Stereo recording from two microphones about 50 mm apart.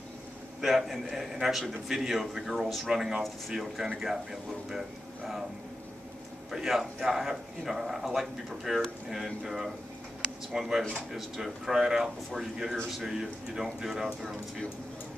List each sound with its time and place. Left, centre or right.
0.6 s a man's voice: centre
6.5 s a man's voice: centre